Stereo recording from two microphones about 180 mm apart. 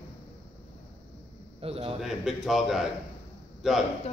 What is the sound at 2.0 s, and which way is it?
A man's voice, centre (ahead or behind).